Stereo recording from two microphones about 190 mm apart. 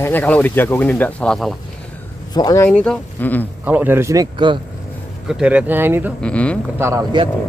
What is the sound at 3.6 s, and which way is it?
Speech, 10° right (ahead or behind).